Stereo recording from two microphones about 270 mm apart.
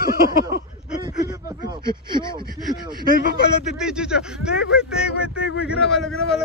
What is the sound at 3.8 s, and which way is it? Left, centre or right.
Speech, centre.